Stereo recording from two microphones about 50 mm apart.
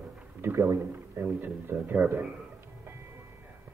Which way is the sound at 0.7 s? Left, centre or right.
Right.